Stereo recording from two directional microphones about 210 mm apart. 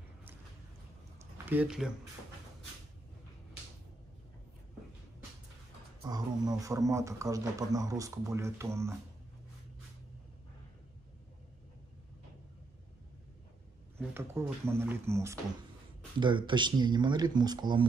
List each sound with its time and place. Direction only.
1.5 s speech: 5° right (ahead or behind)
6.0 s a man's voice: 20° right (ahead or behind)
14.1 s a man's voice: 10° right (ahead or behind)